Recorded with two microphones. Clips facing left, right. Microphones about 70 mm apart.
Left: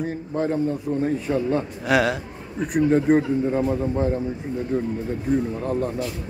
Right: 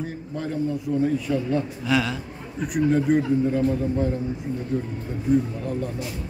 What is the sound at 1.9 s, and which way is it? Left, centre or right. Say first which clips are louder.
Speech: left 4 dB; left.